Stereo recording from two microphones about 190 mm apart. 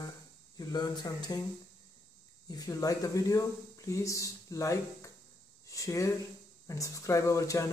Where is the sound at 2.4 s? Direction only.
20° left (ahead or behind).